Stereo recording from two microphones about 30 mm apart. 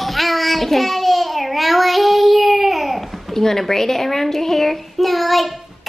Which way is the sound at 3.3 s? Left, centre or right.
Centre.